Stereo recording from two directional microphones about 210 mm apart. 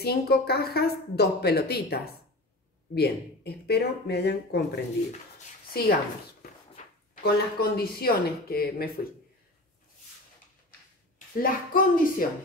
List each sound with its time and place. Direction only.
0.0 s a woman's voice: 50° left (ahead or behind)
5.7 s speech: 45° left (ahead or behind)
7.2 s a woman's voice: 45° left (ahead or behind)
11.3 s speech: 40° left (ahead or behind)